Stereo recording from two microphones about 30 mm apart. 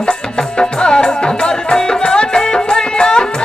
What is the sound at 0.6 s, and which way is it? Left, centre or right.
Music, left.